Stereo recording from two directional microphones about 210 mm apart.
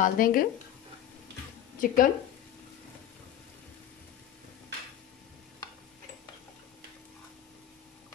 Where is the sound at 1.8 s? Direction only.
40° left (ahead or behind).